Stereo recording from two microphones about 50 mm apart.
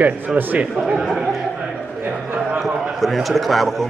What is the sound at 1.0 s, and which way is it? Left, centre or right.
Speech, centre.